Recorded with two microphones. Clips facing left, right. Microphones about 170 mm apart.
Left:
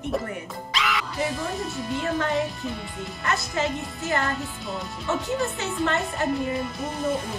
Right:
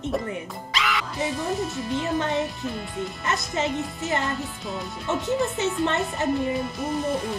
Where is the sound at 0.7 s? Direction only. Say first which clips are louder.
Even; centre (ahead or behind).